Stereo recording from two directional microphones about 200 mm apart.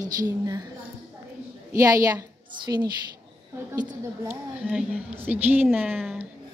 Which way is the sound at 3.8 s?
10° right (ahead or behind).